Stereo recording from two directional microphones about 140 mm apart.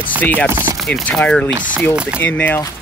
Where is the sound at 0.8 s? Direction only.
Centre (ahead or behind).